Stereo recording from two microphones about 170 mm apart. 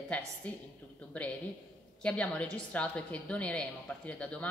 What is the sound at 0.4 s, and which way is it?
Speech, 10° left (ahead or behind).